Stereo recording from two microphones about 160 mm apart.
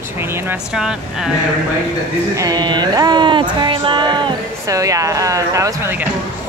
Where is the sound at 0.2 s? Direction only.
15° right (ahead or behind).